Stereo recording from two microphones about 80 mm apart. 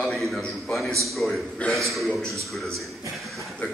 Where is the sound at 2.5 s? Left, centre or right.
Centre.